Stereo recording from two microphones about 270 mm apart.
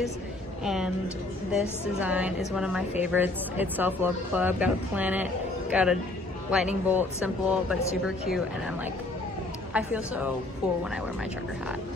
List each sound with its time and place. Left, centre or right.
1.5 s speech: centre
9.8 s speech: centre